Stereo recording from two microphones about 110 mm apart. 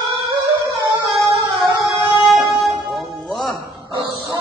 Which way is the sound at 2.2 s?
Centre (ahead or behind).